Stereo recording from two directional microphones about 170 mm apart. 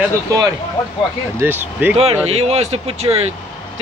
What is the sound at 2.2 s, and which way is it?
Speech, 40° right (ahead or behind).